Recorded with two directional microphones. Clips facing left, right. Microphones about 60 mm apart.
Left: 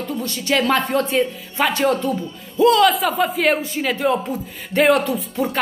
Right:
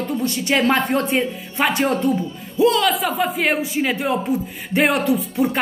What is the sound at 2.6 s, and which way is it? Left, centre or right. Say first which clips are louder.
Speech: left 3 dB; centre.